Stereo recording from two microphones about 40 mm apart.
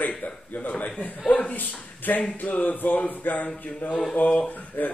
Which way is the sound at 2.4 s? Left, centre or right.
Left.